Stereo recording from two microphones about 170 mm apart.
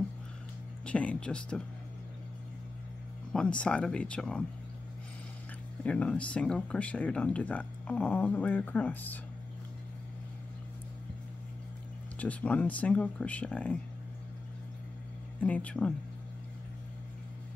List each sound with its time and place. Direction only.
0.8 s speech: 5° left (ahead or behind)
3.3 s speech: 5° left (ahead or behind)
5.9 s speech: 10° left (ahead or behind)
12.2 s speech: 10° left (ahead or behind)
15.4 s speech: 10° left (ahead or behind)